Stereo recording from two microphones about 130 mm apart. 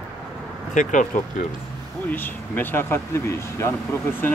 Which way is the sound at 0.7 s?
75° left (ahead or behind).